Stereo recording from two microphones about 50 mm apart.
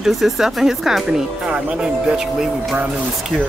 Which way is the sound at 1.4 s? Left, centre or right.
Right.